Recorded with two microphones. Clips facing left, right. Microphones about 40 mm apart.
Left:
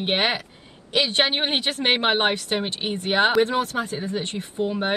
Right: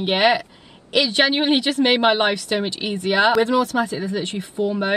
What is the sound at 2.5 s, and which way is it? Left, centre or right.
Speech, right.